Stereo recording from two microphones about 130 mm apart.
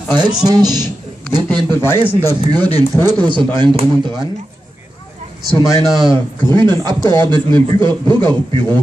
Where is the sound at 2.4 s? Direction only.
30° right (ahead or behind).